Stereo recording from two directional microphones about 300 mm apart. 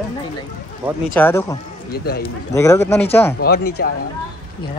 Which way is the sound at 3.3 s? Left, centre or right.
Left.